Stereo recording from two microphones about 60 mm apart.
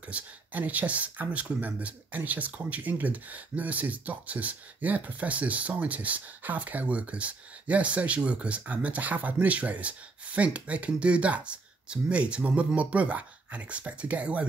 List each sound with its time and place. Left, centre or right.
0.1 s speech: right